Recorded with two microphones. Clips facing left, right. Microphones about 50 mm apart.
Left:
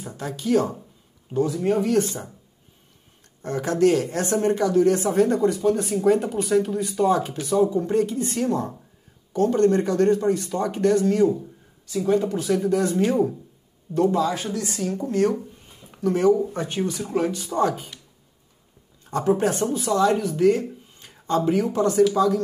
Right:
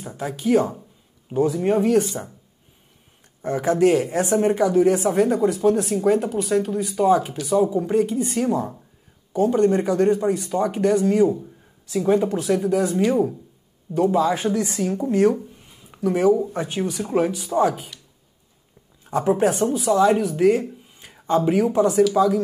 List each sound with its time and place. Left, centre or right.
0.1 s speech: centre
3.4 s speech: centre
12.4 s speech: centre
15.3 s a sound: centre
16.5 s speech: centre
19.0 s speech: centre